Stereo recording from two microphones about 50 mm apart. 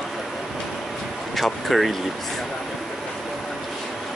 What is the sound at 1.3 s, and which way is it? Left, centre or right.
Vehicle, centre.